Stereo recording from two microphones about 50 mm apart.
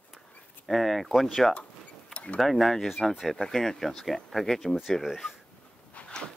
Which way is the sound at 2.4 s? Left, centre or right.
Centre.